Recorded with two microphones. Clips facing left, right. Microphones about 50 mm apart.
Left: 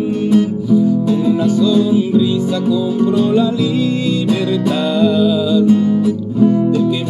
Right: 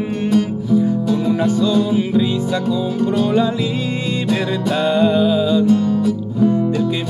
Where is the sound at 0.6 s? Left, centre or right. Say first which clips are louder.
Left 3 dB; right.